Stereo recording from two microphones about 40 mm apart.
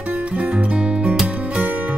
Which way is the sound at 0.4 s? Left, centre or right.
Right.